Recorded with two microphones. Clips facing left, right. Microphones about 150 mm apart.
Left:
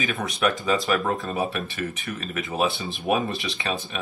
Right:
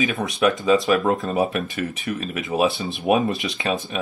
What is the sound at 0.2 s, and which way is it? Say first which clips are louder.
Speech: right 4 dB; 25° right (ahead or behind).